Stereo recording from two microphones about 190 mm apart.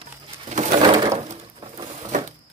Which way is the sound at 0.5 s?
40° right (ahead or behind).